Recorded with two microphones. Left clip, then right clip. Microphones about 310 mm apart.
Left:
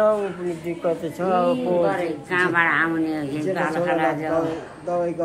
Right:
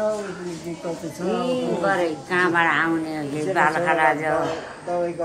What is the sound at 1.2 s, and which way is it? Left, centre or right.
Speech, centre.